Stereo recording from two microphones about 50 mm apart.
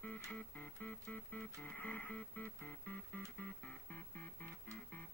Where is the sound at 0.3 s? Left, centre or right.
Left.